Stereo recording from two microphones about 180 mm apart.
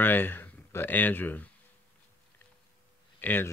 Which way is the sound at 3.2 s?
10° left (ahead or behind).